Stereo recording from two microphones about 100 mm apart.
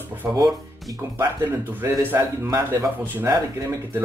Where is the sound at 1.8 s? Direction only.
30° right (ahead or behind).